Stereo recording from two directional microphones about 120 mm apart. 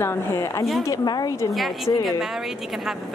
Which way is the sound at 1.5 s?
Centre (ahead or behind).